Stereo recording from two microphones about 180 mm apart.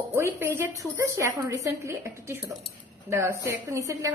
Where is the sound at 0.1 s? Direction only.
15° right (ahead or behind).